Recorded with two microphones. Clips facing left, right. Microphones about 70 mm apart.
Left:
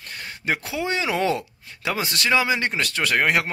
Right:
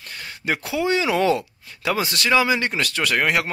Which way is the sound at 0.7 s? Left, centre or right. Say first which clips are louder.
Right 7 dB; left.